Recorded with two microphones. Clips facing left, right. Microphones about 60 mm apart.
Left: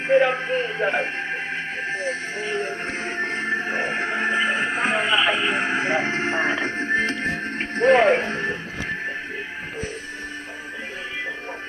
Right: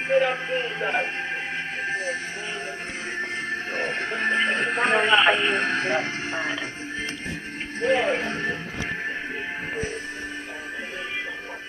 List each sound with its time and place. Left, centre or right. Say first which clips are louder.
0.1 s speech: left 4 dB; left
3.2 s music: left 4 dB; left
4.4 s music: left 1 dB; centre; by 7.3 s left
7.8 s speech: left 6 dB; left
8.2 s speech: left 2 dB; left